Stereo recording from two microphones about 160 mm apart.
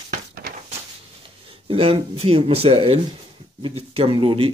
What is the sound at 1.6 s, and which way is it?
Speech, 35° right (ahead or behind).